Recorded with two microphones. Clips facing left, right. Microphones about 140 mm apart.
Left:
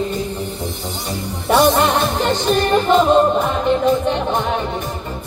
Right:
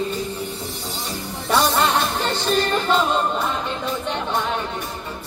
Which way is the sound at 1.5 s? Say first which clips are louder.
Left 5 dB; 15° left (ahead or behind).